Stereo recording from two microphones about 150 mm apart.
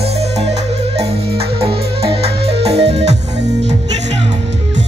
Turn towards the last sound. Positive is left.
turn(degrees=-45)  # may be behind; listen again after turning